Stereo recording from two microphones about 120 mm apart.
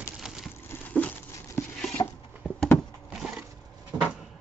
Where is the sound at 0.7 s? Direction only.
15° left (ahead or behind).